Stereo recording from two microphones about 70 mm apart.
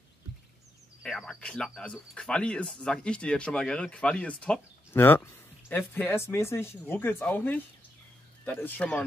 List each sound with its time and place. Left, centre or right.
1.0 s speech: centre
4.9 s a sound: left
5.9 s speech: left
8.8 s speech: centre